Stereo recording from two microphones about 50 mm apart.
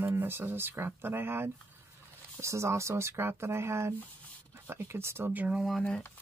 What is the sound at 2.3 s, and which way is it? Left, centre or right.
Speech, right.